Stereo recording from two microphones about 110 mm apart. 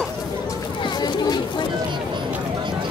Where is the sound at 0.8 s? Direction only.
40° left (ahead or behind).